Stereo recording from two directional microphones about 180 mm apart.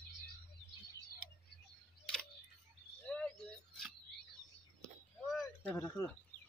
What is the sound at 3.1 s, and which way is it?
Bird, 5° left (ahead or behind).